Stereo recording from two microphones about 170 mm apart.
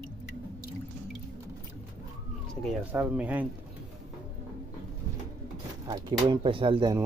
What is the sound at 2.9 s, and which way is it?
Speech, 10° right (ahead or behind).